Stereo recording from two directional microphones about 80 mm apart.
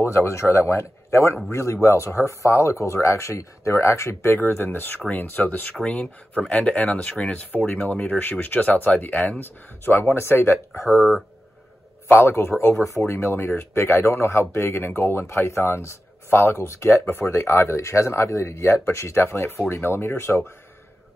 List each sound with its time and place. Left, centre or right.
0.0 s speech: left
11.0 s speech: centre
12.1 s speech: left